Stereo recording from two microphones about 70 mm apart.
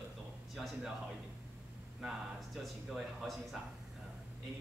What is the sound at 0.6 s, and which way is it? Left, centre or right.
Speech, centre.